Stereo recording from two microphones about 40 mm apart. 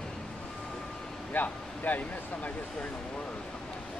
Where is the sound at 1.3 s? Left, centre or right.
Left.